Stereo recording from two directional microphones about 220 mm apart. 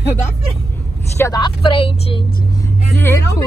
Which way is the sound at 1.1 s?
15° left (ahead or behind).